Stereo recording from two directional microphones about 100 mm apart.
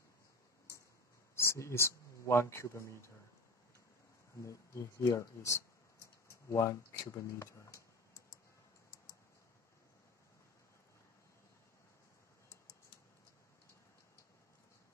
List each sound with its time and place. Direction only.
1.3 s speech: 25° left (ahead or behind)
4.4 s speech: 30° left (ahead or behind)